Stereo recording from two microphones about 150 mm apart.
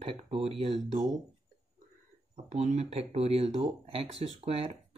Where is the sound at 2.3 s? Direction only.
55° right (ahead or behind).